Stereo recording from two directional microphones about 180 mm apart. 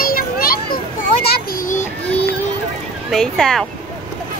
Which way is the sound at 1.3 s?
45° left (ahead or behind).